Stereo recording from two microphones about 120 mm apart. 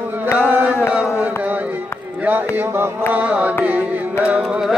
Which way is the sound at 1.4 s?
15° right (ahead or behind).